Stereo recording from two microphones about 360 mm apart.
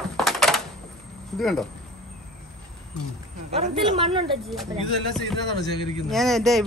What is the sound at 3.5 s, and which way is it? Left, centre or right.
Speech, centre.